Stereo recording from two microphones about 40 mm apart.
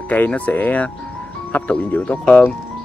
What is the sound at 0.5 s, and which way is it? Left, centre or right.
Speech, left.